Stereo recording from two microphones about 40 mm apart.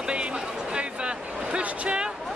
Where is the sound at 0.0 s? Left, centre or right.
Right.